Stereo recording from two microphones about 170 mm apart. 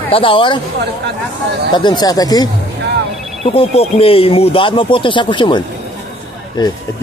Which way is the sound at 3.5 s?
35° left (ahead or behind).